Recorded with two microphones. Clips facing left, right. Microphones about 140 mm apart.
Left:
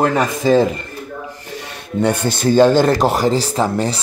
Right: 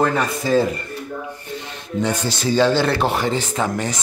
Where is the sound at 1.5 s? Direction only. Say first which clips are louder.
Left 2 dB; 60° left (ahead or behind).